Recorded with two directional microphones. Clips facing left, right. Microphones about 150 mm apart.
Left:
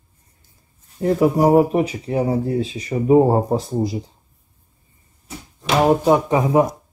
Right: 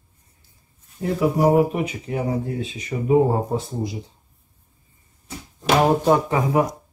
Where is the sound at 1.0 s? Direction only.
45° left (ahead or behind).